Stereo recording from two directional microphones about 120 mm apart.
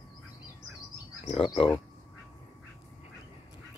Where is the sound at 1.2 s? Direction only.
55° left (ahead or behind).